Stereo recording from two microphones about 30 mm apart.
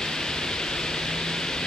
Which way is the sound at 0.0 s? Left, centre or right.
Left.